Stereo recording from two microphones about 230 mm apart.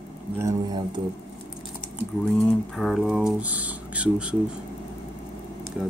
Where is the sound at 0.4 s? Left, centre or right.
Centre.